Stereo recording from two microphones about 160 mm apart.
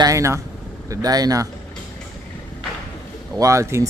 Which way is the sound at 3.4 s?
20° right (ahead or behind).